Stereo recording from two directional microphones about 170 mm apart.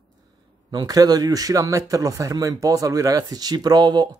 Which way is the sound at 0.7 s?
25° right (ahead or behind).